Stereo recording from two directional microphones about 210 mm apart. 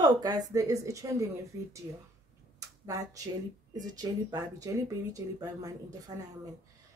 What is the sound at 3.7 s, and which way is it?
Speech, 20° right (ahead or behind).